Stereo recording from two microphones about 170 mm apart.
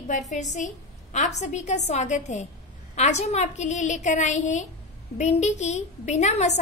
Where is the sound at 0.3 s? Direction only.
45° left (ahead or behind).